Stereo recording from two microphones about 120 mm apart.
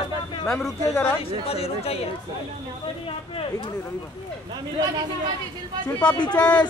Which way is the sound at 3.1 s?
50° left (ahead or behind).